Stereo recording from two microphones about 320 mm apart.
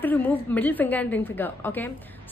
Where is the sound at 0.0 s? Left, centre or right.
Centre.